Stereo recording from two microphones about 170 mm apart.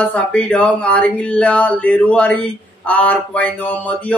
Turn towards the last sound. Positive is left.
turn(degrees=10)  # may be behind; listen again after turning